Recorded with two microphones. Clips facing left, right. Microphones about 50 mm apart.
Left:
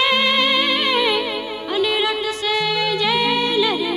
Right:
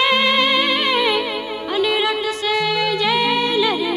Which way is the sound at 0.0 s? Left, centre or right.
Right.